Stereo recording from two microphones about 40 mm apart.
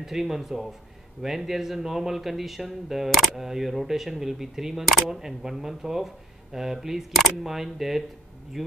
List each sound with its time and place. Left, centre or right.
0.0 s speech: centre